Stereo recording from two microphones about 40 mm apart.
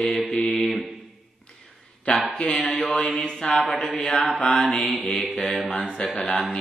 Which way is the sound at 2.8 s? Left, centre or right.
Left.